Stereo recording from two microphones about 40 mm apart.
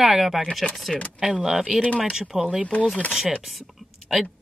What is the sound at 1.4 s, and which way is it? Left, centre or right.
Speech, centre.